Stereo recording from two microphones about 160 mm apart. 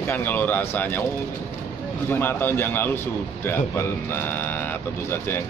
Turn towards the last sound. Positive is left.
turn(degrees=15)  # may be behind; listen again after turning